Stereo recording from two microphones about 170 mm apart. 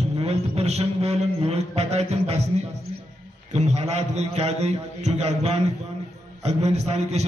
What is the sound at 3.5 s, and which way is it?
A man's voice, 40° right (ahead or behind).